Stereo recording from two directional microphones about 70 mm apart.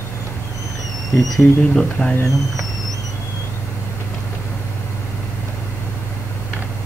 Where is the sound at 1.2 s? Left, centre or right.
Centre.